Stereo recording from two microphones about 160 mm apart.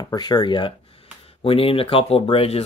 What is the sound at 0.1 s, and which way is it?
Speech, 25° left (ahead or behind).